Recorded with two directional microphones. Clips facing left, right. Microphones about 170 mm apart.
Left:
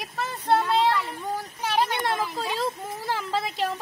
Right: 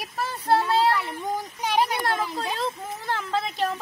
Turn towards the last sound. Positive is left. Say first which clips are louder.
# right 1 dB
turn(degrees=0)  # may be behind; listen again after turning